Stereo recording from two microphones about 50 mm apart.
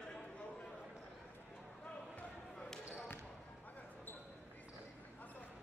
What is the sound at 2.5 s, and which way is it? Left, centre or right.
Basketball bounce, centre.